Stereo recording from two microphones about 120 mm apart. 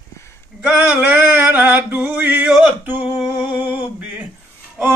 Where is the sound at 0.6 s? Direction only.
15° right (ahead or behind).